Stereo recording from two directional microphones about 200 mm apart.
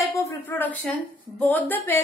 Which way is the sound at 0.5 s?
10° left (ahead or behind).